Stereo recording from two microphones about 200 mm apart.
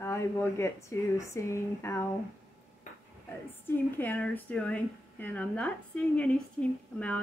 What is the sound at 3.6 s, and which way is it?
Speech, 10° left (ahead or behind).